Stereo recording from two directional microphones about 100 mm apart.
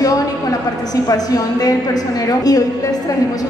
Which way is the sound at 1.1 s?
40° left (ahead or behind).